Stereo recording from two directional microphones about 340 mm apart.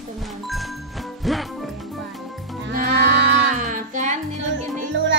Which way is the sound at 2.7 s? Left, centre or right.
Right.